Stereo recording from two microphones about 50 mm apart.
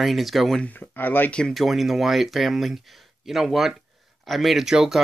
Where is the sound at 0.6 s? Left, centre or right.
Left.